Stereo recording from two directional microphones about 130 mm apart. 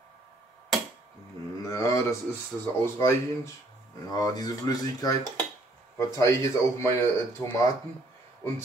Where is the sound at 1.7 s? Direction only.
25° left (ahead or behind).